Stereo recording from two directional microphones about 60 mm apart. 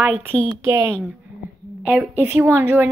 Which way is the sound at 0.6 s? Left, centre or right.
Right.